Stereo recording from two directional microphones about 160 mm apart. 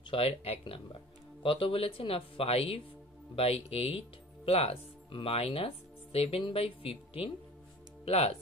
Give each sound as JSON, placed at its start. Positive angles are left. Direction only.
{"t": 0.1, "sound": "speech", "side_deg": 35}